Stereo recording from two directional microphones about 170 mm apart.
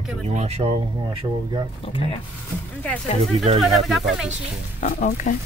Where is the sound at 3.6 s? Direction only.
Centre (ahead or behind).